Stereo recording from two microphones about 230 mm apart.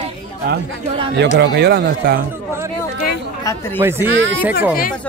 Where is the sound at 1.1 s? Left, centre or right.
Right.